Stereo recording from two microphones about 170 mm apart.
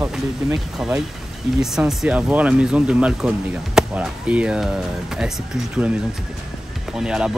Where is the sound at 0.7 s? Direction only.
5° right (ahead or behind).